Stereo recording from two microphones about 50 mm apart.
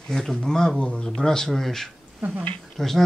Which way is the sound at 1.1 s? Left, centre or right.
Centre.